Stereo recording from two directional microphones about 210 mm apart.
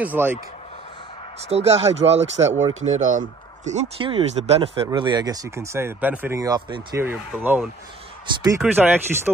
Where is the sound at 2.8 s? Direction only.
35° right (ahead or behind).